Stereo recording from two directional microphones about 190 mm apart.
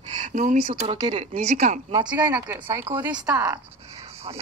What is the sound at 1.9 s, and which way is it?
A woman's voice, 25° right (ahead or behind).